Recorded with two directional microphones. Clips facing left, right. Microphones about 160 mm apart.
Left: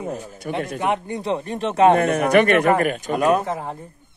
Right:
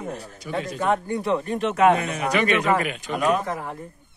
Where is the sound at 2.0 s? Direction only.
60° left (ahead or behind).